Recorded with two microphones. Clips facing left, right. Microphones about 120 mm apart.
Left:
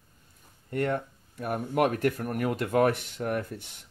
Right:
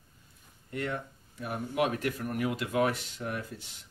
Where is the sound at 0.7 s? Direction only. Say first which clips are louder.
Left 6 dB; 50° left (ahead or behind).